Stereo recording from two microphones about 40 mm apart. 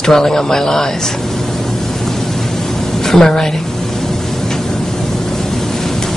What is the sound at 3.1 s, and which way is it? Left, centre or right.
Speech, centre.